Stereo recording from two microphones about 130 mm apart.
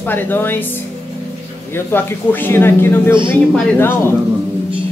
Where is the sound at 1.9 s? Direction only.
15° left (ahead or behind).